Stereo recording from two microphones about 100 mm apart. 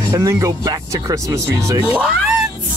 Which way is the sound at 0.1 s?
35° right (ahead or behind).